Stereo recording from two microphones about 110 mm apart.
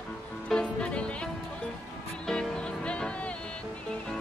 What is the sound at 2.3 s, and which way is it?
Music, 5° left (ahead or behind).